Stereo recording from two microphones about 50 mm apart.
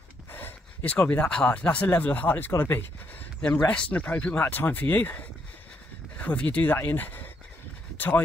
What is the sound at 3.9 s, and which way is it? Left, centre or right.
Speech, left.